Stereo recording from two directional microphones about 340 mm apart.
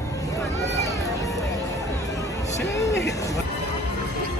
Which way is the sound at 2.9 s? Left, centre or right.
Left.